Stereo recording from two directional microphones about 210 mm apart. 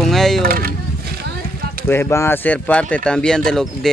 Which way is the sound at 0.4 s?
45° right (ahead or behind).